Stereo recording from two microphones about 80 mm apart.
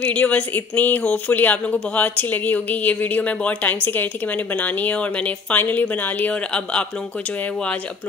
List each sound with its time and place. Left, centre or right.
0.0 s speech: centre